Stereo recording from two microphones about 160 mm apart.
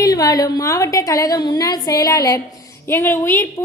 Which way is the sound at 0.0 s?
25° left (ahead or behind).